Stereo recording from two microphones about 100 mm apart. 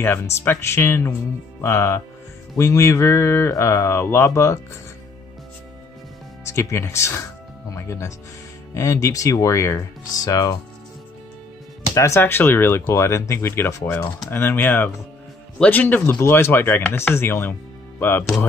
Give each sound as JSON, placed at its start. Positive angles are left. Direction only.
{"t": 0.0, "sound": "speech", "side_deg": 20}
{"t": 6.4, "sound": "speech", "side_deg": 30}
{"t": 11.9, "sound": "speech", "side_deg": 30}